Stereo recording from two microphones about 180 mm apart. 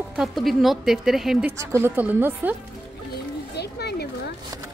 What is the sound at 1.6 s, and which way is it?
Speech, 15° right (ahead or behind).